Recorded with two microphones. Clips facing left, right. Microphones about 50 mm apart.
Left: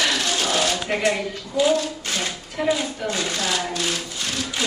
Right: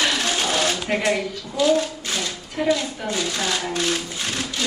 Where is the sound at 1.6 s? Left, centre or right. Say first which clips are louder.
Even; centre.